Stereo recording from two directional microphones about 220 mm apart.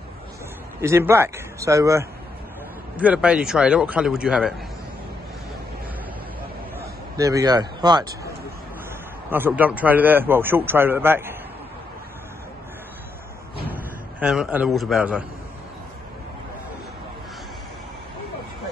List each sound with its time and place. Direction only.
0.7 s a man's voice: 10° right (ahead or behind)
6.8 s a man's voice: 15° right (ahead or behind)
9.3 s a man's voice: 10° right (ahead or behind)
14.2 s a man's voice: 5° right (ahead or behind)